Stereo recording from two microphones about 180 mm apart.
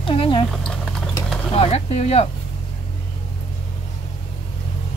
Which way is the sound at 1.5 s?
35° left (ahead or behind).